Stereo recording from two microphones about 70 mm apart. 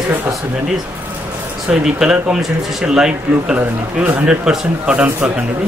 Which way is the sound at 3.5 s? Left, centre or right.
Right.